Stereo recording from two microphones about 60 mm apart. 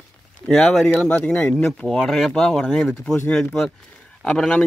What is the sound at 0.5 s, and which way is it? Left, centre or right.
Speech, centre.